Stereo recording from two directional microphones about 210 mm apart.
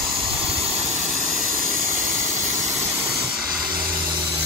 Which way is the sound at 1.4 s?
40° right (ahead or behind).